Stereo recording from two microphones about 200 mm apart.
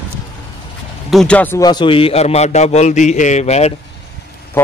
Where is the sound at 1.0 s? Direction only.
5° left (ahead or behind); by 3.7 s 35° left (ahead or behind).